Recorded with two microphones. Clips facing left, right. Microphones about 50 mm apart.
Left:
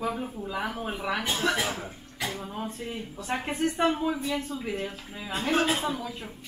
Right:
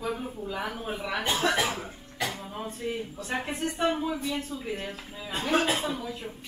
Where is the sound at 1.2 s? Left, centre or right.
Centre.